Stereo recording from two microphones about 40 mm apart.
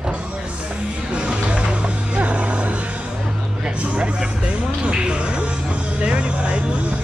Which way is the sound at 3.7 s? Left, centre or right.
Right.